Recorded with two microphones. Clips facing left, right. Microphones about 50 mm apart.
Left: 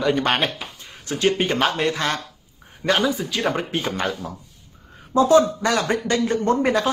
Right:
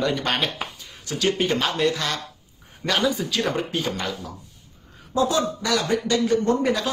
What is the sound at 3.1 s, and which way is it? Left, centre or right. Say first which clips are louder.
Speech: even; centre.